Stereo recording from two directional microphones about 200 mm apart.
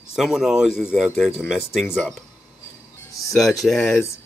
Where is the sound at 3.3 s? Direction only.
Centre (ahead or behind).